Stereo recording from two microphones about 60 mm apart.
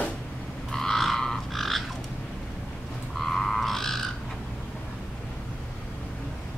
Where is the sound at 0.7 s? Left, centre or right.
Centre.